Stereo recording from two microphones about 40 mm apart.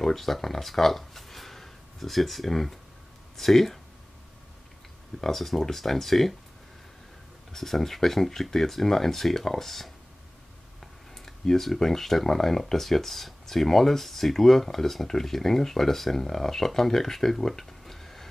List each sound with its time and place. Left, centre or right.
0.0 s speech: centre
5.2 s speech: centre
7.5 s speech: centre
11.2 s speech: centre